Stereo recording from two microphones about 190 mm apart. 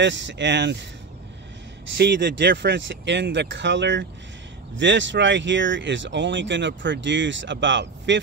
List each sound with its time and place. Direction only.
0.0 s speech: 75° right (ahead or behind)
2.0 s speech: 65° right (ahead or behind)